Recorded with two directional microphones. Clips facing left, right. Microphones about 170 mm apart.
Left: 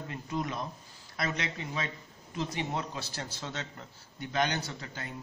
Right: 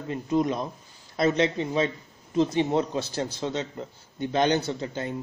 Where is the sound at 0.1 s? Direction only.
25° right (ahead or behind).